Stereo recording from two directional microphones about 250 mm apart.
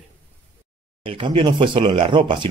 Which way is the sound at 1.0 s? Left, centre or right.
Centre.